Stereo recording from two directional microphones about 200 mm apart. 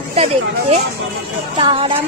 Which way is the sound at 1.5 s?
25° right (ahead or behind).